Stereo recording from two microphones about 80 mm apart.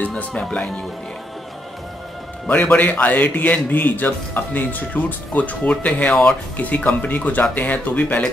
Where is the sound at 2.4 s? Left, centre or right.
Centre.